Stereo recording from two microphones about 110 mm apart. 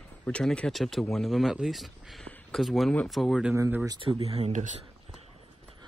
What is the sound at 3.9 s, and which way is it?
Speech, 50° right (ahead or behind).